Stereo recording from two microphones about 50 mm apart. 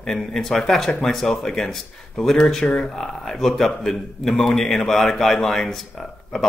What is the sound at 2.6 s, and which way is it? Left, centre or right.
Speech, left.